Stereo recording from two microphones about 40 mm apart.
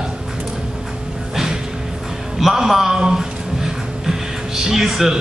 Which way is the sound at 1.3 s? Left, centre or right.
Centre.